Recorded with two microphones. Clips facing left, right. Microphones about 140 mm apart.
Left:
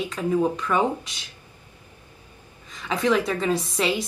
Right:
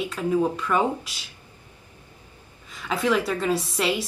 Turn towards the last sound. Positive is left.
turn(degrees=0)  # may be behind; listen again after turning